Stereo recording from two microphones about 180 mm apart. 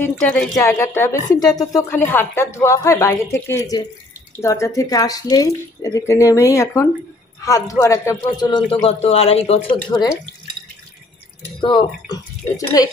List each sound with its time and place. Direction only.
0.0 s a woman's voice: 5° left (ahead or behind)
0.6 s a woman's voice: 15° left (ahead or behind)
8.5 s speech: 25° left (ahead or behind)
11.6 s speech: 25° left (ahead or behind)